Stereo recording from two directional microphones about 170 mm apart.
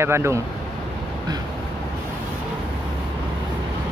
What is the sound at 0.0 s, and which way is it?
Speech, 15° right (ahead or behind).